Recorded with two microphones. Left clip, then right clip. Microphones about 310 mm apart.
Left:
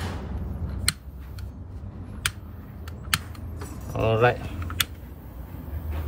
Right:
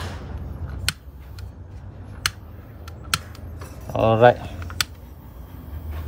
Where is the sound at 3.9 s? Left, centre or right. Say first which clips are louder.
Right 7 dB; right.